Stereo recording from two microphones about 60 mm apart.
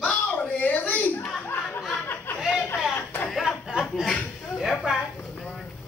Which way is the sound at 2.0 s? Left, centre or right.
Left.